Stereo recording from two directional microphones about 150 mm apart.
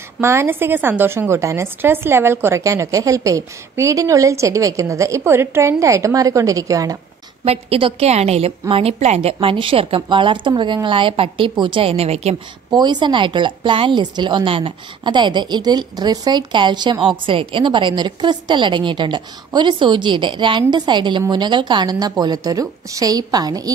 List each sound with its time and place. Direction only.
0.2 s a woman's voice: 15° right (ahead or behind)
7.4 s speech: 40° right (ahead or behind)
12.7 s a woman's voice: 30° right (ahead or behind)